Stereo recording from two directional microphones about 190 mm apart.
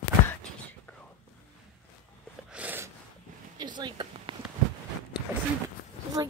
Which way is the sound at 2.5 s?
10° right (ahead or behind).